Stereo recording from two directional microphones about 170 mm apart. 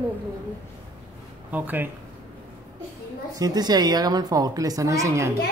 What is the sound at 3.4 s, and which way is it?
A woman's voice, 25° right (ahead or behind).